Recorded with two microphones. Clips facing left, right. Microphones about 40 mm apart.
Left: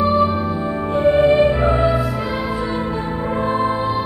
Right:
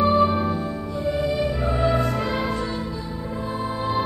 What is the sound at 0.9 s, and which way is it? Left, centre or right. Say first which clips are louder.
Music: left 11 dB; left.